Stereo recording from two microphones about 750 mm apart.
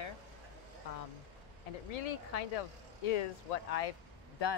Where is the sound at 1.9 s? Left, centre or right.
Left.